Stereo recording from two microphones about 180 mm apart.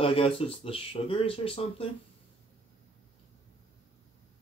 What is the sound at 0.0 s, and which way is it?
Speech, 30° left (ahead or behind).